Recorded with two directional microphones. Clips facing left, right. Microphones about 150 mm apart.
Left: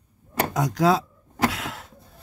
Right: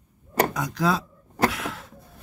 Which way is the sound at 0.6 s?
20° left (ahead or behind).